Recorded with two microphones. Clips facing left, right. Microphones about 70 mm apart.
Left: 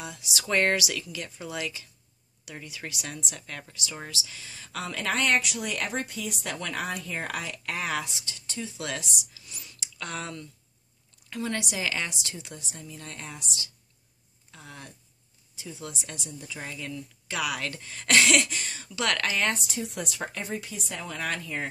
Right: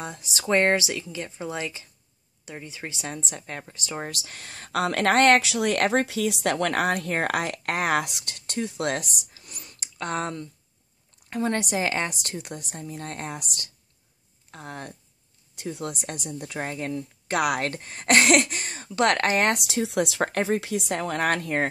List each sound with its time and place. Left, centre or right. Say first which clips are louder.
0.0 s a woman's voice: right 4 dB; right
4.1 s a woman's voice: right 1 dB; right
16.6 s speech: right 6 dB; right
19.5 s speech: right 8 dB; right
20.2 s speech: right 10 dB; right